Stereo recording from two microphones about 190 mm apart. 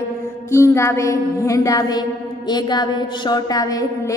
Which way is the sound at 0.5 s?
15° left (ahead or behind).